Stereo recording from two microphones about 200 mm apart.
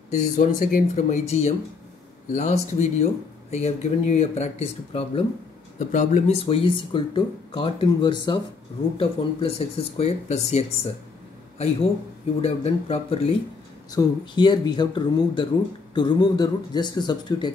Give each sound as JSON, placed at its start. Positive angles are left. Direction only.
{"t": 0.2, "sound": "a man's voice", "side_deg": 40}